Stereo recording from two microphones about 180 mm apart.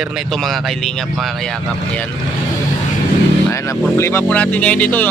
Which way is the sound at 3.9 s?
15° left (ahead or behind).